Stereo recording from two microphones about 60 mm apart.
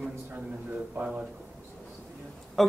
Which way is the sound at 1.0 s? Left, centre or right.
Right.